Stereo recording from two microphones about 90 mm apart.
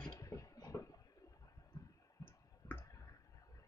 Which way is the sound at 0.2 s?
35° left (ahead or behind).